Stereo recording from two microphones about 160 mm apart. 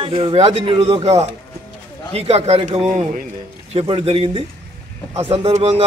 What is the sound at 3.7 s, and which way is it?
A man's voice, 35° right (ahead or behind).